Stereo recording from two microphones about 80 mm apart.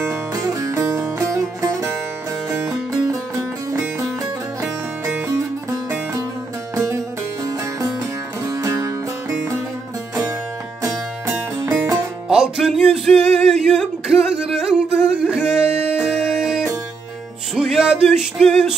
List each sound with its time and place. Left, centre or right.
0.3 s music: right
6.7 s music: right
8.5 s music: right
10.8 s music: right
12.3 s music: centre